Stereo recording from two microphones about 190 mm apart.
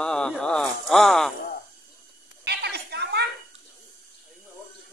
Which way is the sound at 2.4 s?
60° right (ahead or behind).